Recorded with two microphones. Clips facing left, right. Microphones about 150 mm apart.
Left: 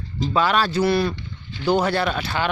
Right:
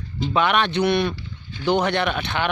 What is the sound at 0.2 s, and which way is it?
Speech, 40° left (ahead or behind).